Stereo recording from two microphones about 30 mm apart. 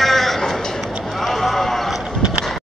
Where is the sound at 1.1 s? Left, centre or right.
Centre.